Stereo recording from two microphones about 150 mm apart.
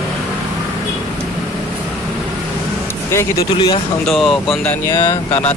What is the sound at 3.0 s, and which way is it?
Speech, 20° left (ahead or behind).